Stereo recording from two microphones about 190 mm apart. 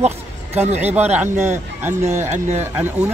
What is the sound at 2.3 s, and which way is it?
Speech, 40° right (ahead or behind).